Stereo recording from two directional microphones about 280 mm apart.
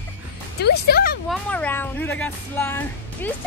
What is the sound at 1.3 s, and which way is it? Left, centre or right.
Music, centre.